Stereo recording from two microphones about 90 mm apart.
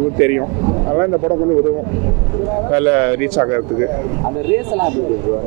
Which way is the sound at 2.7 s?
25° right (ahead or behind).